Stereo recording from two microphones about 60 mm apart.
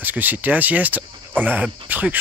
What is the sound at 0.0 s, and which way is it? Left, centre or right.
Speech, right.